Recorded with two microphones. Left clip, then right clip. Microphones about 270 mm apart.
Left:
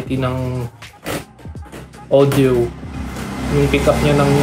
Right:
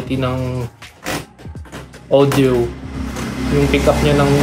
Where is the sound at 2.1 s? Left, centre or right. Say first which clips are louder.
Even; centre.